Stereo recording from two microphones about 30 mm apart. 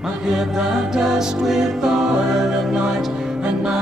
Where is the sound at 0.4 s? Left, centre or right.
Centre.